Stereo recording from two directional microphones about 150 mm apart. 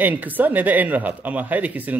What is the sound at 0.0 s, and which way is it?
Speech, 10° right (ahead or behind).